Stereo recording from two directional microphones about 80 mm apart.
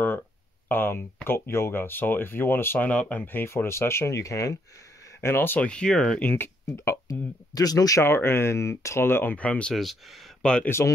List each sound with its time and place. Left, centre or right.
0.7 s speech: left
5.2 s speech: left
5.7 s speech: centre; by 7.0 s left
7.1 s speech: left
8.0 s speech: left; by 9.8 s centre
9.8 s speech: centre
10.4 s speech: centre